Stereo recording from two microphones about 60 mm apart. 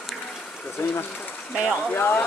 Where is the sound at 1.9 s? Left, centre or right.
Left.